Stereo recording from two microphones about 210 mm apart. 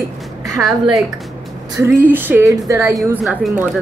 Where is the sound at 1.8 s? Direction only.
10° right (ahead or behind).